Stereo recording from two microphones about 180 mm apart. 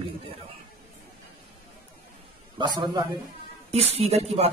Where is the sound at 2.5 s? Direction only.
25° right (ahead or behind).